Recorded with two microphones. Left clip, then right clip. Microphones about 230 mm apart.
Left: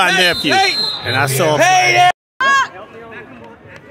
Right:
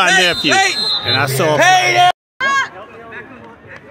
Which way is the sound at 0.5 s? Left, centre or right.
Right.